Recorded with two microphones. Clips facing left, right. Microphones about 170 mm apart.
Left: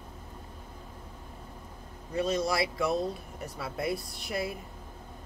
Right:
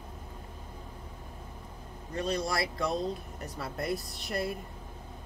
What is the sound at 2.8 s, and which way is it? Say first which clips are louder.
Speech: left 2 dB; 5° left (ahead or behind).